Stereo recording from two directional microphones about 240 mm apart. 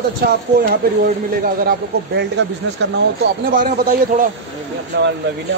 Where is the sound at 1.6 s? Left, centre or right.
Right.